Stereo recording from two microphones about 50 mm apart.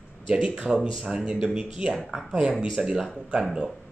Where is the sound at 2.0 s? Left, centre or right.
Centre.